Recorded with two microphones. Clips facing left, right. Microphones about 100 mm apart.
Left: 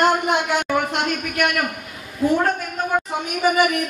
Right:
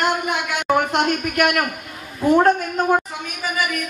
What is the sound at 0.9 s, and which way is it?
Speech, 45° right (ahead or behind).